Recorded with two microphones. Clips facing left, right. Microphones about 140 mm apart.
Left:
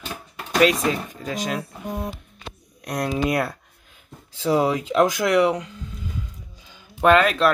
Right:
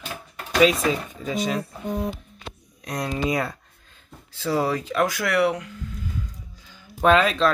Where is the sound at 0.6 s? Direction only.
Centre (ahead or behind).